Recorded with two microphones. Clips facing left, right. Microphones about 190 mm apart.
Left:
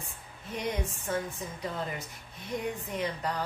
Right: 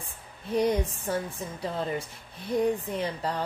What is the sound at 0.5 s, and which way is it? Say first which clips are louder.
Speech: right 8 dB; 35° right (ahead or behind).